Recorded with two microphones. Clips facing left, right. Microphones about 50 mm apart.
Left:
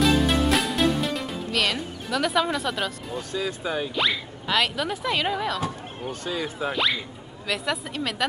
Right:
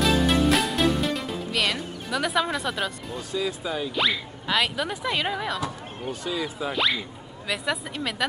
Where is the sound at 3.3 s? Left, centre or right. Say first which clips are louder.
Even; left.